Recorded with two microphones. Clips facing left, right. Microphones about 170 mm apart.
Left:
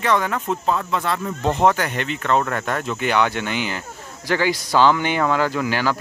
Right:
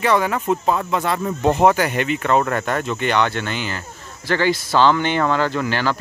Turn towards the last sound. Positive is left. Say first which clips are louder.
# even
turn(degrees=10)  # may be behind; listen again after turning